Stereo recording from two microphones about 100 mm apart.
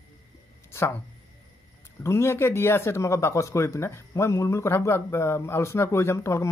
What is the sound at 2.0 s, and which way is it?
Speech, 25° left (ahead or behind).